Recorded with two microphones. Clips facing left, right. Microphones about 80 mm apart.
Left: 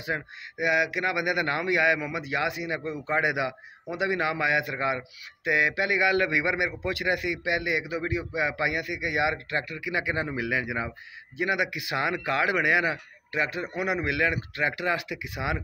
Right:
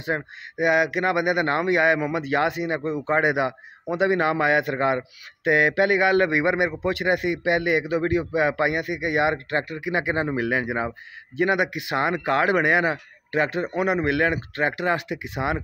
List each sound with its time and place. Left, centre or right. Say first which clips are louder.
0.0 s a man's voice: right 5 dB; right
1.2 s a man's voice: right 5 dB; right